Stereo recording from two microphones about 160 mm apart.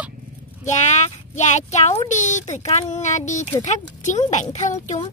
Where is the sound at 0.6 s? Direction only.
45° left (ahead or behind).